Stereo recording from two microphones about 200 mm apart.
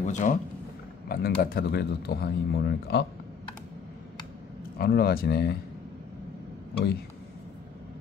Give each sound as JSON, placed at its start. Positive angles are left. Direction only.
{"t": 0.0, "sound": "speech", "side_deg": 40}
{"t": 4.7, "sound": "speech", "side_deg": 50}